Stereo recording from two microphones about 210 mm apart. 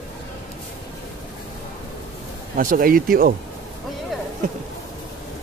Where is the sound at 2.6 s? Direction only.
40° right (ahead or behind).